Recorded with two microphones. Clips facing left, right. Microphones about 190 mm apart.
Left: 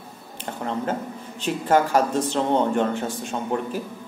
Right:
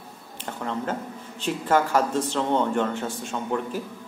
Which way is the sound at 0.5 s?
25° left (ahead or behind).